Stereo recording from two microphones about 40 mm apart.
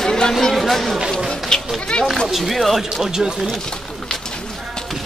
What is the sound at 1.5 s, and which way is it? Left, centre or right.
Run, centre.